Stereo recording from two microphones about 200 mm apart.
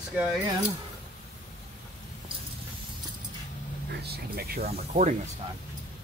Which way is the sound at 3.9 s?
50° right (ahead or behind).